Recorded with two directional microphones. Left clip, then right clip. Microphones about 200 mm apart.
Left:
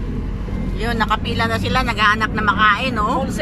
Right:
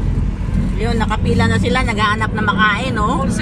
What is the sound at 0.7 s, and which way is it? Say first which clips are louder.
Speech: left 1 dB; centre (ahead or behind).